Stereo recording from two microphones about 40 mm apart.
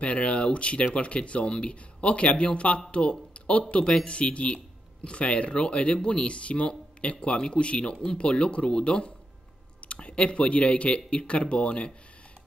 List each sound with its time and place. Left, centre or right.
0.0 s speech: left